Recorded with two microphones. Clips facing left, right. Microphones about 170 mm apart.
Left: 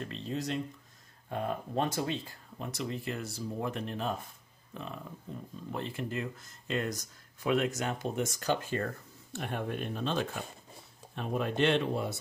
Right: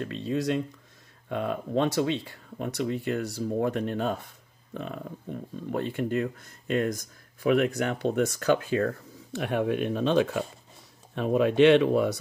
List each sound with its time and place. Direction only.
0.0 s speech: 65° right (ahead or behind)